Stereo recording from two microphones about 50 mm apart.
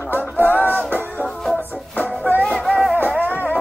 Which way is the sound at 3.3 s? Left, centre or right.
Left.